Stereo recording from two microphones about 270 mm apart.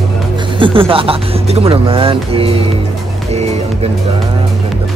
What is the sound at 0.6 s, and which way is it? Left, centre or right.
Speech, centre.